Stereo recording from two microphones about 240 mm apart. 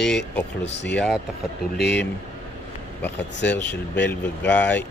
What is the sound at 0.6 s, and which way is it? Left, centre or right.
Speech, left.